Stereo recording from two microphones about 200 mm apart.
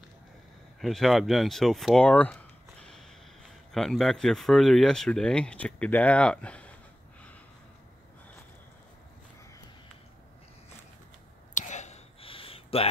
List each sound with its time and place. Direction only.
0.7 s speech: centre (ahead or behind)
11.5 s whispering: 35° left (ahead or behind)